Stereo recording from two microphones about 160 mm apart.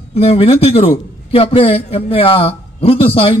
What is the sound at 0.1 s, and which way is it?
A man's voice, 35° left (ahead or behind).